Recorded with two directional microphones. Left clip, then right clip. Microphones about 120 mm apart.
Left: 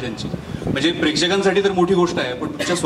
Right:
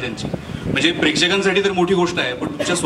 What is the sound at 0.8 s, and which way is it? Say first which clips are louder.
A man's voice: right 2 dB; 10° right (ahead or behind).